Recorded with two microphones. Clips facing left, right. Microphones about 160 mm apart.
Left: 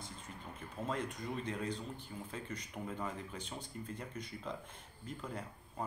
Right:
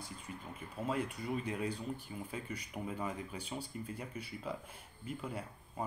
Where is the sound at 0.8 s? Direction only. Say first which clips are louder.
Right 3 dB; 10° right (ahead or behind).